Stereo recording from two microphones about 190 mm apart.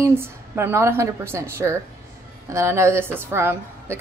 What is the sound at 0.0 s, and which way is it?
A woman's voice, 15° right (ahead or behind).